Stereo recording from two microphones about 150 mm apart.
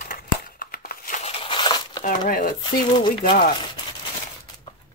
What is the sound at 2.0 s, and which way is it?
Speech, 65° left (ahead or behind).